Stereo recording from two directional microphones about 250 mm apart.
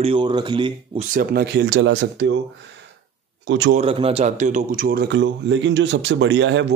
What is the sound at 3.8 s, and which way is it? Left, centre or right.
A man's voice, right.